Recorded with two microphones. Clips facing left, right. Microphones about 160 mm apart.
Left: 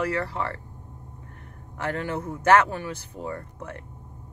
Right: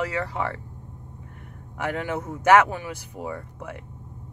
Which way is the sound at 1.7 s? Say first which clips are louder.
Right 1 dB; 15° right (ahead or behind).